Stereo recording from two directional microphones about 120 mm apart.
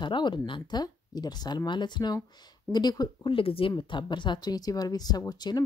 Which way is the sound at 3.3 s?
50° left (ahead or behind).